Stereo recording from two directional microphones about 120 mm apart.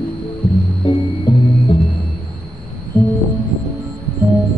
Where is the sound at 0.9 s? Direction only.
40° left (ahead or behind).